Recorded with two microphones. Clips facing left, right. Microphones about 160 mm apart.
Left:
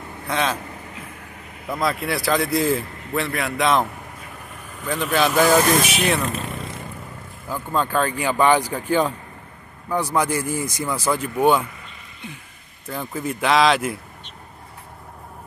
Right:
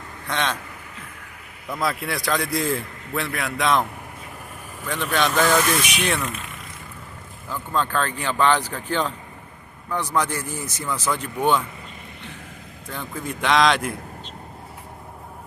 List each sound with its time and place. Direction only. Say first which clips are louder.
0.3 s a man's voice: left 3 dB; 5° left (ahead or behind)
1.7 s a man's voice: left 3 dB; centre (ahead or behind)
4.8 s a man's voice: left 3 dB; centre (ahead or behind)
5.6 s speech: left 4 dB; 40° left (ahead or behind)
7.4 s speech: left 2 dB; 10° left (ahead or behind)
12.8 s a man's voice: left 4 dB; 5° left (ahead or behind)